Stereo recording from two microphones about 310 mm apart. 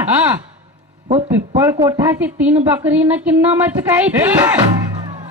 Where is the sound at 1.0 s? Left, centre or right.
Right.